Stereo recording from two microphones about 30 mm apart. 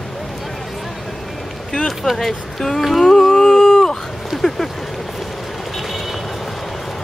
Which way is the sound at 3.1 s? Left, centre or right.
Centre.